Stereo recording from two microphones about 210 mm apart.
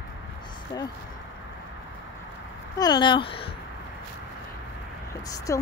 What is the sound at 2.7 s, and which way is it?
Speech, 20° left (ahead or behind).